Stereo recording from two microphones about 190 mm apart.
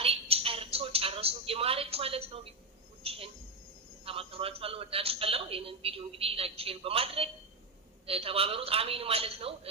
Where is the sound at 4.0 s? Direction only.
30° right (ahead or behind).